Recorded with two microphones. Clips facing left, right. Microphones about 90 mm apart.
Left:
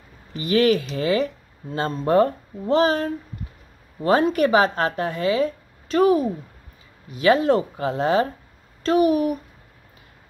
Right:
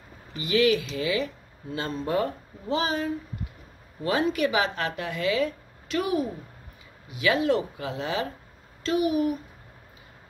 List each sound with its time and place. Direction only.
0.4 s speech: 45° left (ahead or behind)